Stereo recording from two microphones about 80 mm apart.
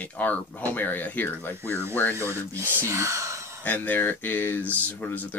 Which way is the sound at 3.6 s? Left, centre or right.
Left.